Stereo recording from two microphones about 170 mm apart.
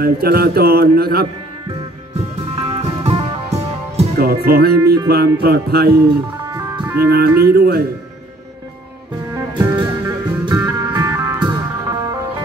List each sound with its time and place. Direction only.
0.0 s a man's voice: 65° right (ahead or behind)
2.5 s music: 30° right (ahead or behind)
4.2 s a man's voice: 65° right (ahead or behind)
5.0 s music: 70° right (ahead or behind)
7.1 s music: 70° right (ahead or behind)
9.3 s music: 20° right (ahead or behind)